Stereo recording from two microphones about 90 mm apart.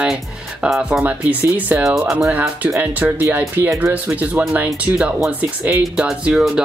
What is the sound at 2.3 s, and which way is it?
Speech, 15° right (ahead or behind).